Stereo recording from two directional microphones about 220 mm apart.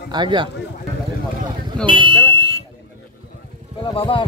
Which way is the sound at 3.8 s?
20° left (ahead or behind).